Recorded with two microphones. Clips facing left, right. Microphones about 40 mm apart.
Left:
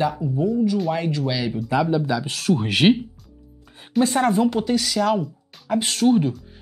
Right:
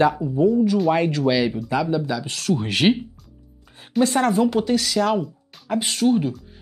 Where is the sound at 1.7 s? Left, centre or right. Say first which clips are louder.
Left 3 dB; left.